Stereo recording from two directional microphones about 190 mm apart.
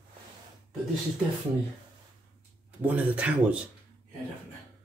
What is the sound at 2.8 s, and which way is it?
Speech, 5° right (ahead or behind).